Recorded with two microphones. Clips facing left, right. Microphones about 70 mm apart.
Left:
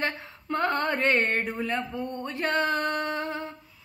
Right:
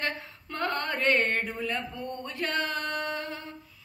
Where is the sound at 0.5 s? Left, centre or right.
Centre.